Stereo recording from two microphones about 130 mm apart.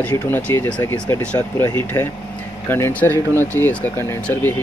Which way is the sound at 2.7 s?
15° left (ahead or behind).